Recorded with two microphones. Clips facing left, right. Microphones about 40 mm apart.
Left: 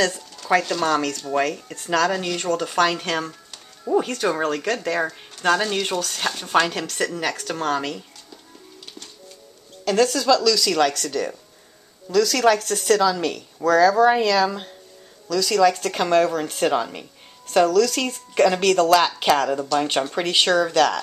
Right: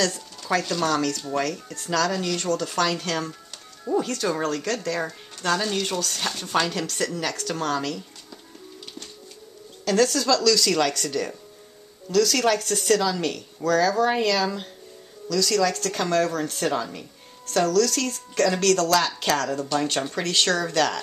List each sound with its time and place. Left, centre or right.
0.5 s speech: centre
9.8 s speech: centre
12.1 s speech: centre
14.2 s speech: left
16.7 s speech: left
17.5 s speech: centre